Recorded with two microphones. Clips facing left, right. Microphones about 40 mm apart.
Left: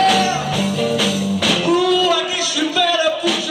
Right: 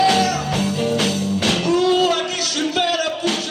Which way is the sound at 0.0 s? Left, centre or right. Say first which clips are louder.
Left 1 dB; left.